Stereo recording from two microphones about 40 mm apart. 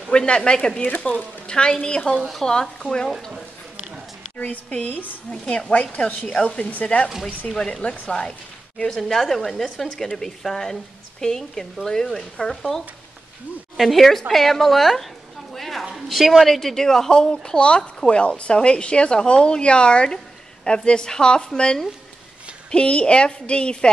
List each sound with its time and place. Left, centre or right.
0.1 s a woman's voice: left
4.4 s a woman's voice: left
5.9 s speech: left
6.2 s speech: centre
6.6 s speech: left
7.5 s a woman's voice: centre
15.5 s a sound: centre
15.8 s a woman's voice: centre
22.8 s a woman's voice: left